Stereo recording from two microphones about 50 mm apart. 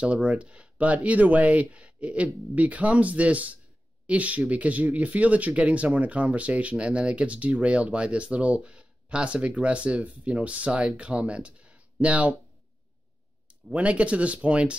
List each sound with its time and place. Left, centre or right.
0.0 s speech: right
13.5 s speech: right